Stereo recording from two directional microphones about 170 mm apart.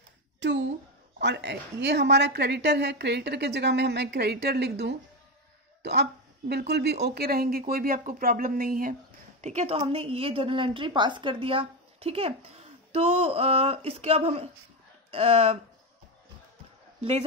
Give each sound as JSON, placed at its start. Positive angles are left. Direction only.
{"t": 1.2, "sound": "a woman's voice", "side_deg": -85}
{"t": 5.8, "sound": "cough", "side_deg": -80}
{"t": 6.7, "sound": "speech", "side_deg": -75}
{"t": 9.4, "sound": "a woman's voice", "side_deg": -45}